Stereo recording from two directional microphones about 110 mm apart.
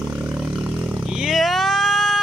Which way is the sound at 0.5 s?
10° right (ahead or behind).